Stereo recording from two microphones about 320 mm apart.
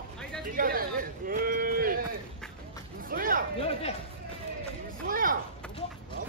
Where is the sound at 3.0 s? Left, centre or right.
Right.